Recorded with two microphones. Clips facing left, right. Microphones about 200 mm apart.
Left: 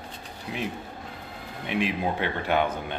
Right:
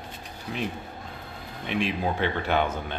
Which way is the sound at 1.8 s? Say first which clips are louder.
Right 1 dB; 15° left (ahead or behind).